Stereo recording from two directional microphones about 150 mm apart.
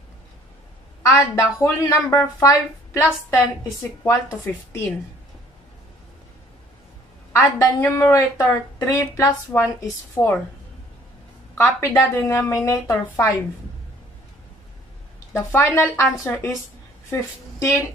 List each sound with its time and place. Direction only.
1.1 s a woman's voice: 20° left (ahead or behind)
4.5 s a woman's voice: 15° left (ahead or behind)
7.3 s a woman's voice: 20° left (ahead or behind)
11.5 s a woman's voice: 15° left (ahead or behind)
15.3 s a woman's voice: 15° left (ahead or behind)